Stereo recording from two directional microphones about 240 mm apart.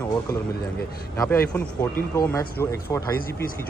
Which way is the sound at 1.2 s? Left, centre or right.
Centre.